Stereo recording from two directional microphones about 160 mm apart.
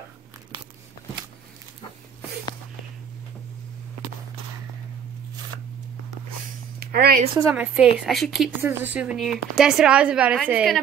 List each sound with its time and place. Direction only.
6.8 s a sound: 70° right (ahead or behind)
7.3 s speech: 15° right (ahead or behind)
8.5 s a woman's voice: 10° right (ahead or behind)